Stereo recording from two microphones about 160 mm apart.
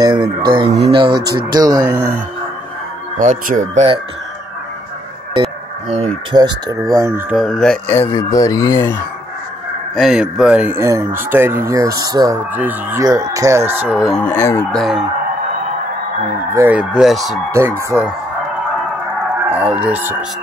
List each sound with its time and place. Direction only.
0.0 s speech: 25° right (ahead or behind)
3.2 s speech: 55° right (ahead or behind)
5.3 s a sound: 35° right (ahead or behind)
6.3 s speech: 25° right (ahead or behind)
7.3 s speech: centre (ahead or behind)
7.9 s speech: 15° left (ahead or behind)
9.9 s speech: 5° right (ahead or behind); by 12.4 s 20° right (ahead or behind)
12.5 s speech: 10° right (ahead or behind)
13.0 s speech: 20° right (ahead or behind)
14.1 s speech: 10° left (ahead or behind)
14.7 s speech: centre (ahead or behind)
16.5 s speech: 10° right (ahead or behind)
17.5 s speech: 15° right (ahead or behind)
19.5 s speech: 10° right (ahead or behind)